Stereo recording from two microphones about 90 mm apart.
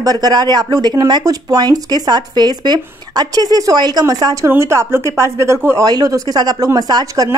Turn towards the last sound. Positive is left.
turn(degrees=-45)  # may be behind; listen again after turning